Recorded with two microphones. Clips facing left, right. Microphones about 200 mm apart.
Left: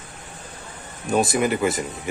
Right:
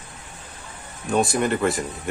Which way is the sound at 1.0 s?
Centre (ahead or behind).